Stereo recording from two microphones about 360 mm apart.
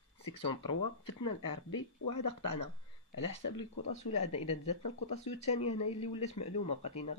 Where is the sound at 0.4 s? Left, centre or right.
Left.